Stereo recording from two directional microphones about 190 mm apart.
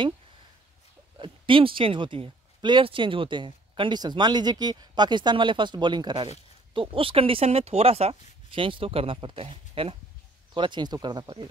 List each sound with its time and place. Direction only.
1.1 s speech: 25° right (ahead or behind)